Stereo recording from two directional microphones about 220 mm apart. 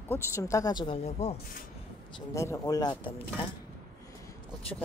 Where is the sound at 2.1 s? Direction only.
15° left (ahead or behind).